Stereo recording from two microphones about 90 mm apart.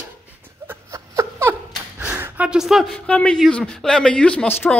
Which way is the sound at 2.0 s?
15° right (ahead or behind).